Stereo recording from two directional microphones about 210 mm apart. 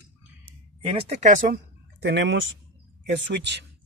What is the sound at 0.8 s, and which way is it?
Speech, 25° right (ahead or behind).